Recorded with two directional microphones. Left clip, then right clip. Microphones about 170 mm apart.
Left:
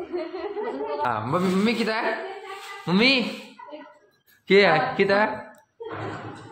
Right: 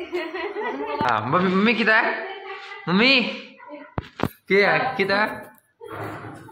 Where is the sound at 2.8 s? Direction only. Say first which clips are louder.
Right 3 dB; 20° left (ahead or behind).